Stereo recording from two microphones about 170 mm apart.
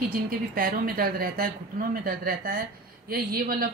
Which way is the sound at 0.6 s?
60° right (ahead or behind).